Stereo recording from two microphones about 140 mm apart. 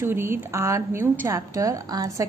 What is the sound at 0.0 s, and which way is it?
A woman's voice, 15° right (ahead or behind).